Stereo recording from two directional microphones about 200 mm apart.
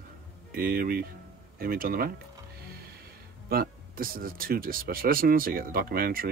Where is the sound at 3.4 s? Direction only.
50° right (ahead or behind).